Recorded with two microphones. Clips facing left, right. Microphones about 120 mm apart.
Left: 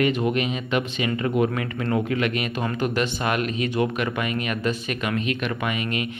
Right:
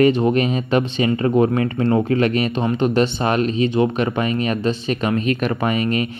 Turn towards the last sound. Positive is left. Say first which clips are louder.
# right 7 dB
turn(degrees=-40)  # may be behind; listen again after turning